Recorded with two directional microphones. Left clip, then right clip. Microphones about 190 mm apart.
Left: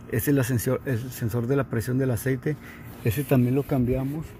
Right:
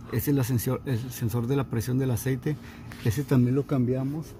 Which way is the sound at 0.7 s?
5° right (ahead or behind).